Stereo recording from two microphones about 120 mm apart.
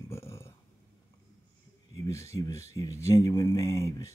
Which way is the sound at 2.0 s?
25° left (ahead or behind).